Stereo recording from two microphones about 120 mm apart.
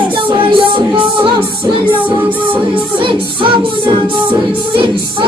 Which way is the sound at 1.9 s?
15° right (ahead or behind).